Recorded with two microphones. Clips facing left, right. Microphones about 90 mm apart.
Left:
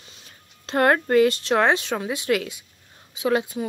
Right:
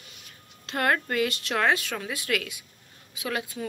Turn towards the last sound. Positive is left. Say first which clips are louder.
# left 9 dB
turn(degrees=25)  # may be behind; listen again after turning